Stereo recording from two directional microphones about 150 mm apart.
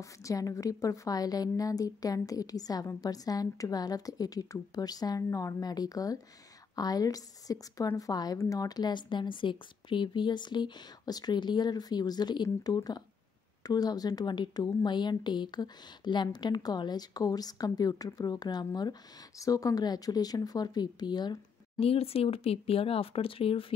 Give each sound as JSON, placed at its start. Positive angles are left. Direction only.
{"t": 0.0, "sound": "speech", "side_deg": 20}
{"t": 21.8, "sound": "speech", "side_deg": 40}